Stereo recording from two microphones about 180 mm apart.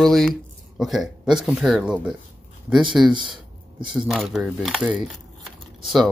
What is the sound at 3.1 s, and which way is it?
Speech, 25° right (ahead or behind).